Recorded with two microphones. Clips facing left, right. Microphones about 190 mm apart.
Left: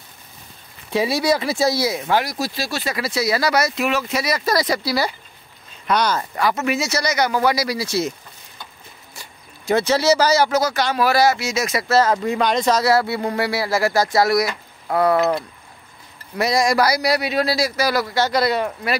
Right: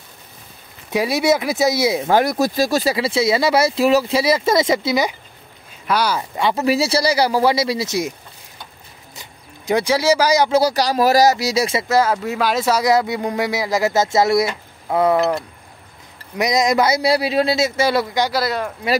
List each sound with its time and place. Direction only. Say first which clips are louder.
1.4 s speech: right 2 dB; 20° right (ahead or behind)
2.0 s speech: right 5 dB; 50° right (ahead or behind); by 5.1 s 20° right (ahead or behind)
5.9 s speech: even; 5° right (ahead or behind)
6.3 s speech: right 3 dB; 30° right (ahead or behind)
9.1 s a sound: right 3 dB; 15° right (ahead or behind)
10.5 s speech: right 3 dB; 35° right (ahead or behind)
11.9 s speech: left 2 dB; 10° right (ahead or behind)
16.3 s speech: right 1 dB; 20° right (ahead or behind)
18.2 s speech: left 1 dB; 5° right (ahead or behind)